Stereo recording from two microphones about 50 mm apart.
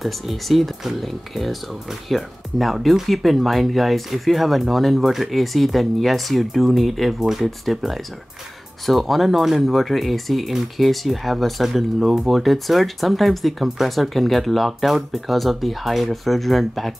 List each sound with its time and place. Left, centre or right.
0.0 s speech: centre